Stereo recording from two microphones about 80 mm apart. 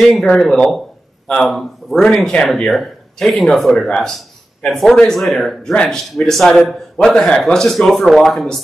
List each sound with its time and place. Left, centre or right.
0.0 s a man's voice: centre